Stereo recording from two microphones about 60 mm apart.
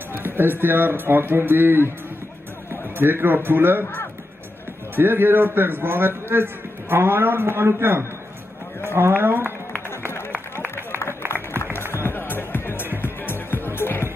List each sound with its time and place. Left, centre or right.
0.4 s a man's voice: right
4.9 s a man's voice: right
11.0 s music: left